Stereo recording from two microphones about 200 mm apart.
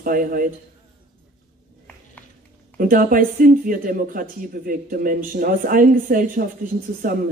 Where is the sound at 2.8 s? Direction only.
45° right (ahead or behind).